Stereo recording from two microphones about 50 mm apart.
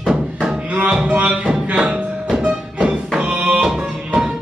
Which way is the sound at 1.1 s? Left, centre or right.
Right.